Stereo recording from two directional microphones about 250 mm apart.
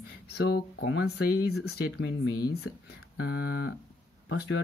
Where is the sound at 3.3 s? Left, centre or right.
Left.